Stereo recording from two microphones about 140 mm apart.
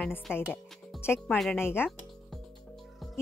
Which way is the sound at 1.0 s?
15° left (ahead or behind).